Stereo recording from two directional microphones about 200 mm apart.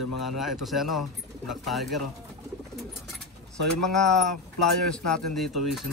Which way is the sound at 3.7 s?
Centre (ahead or behind).